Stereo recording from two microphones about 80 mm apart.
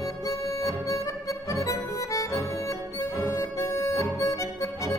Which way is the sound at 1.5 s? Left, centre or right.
Left.